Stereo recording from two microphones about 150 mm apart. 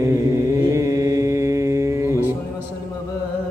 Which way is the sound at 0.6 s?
20° right (ahead or behind).